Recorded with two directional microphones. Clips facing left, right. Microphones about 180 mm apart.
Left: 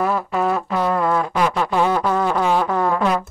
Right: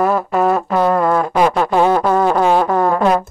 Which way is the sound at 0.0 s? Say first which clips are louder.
Right 5 dB; 50° right (ahead or behind).